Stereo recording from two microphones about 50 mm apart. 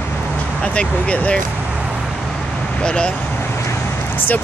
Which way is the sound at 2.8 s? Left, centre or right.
Centre.